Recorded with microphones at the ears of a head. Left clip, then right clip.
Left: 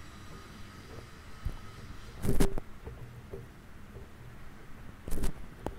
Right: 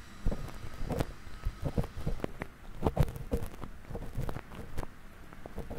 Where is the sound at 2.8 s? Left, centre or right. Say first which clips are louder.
Right 16 dB; right.